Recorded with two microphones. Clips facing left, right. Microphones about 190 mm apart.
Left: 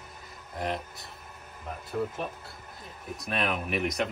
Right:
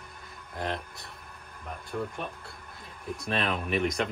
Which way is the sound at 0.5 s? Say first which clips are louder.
Left 1 dB; centre (ahead or behind).